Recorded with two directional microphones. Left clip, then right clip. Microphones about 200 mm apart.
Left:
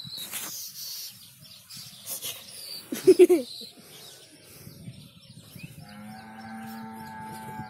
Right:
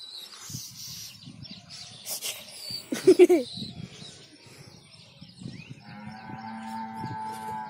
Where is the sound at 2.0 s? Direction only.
45° right (ahead or behind).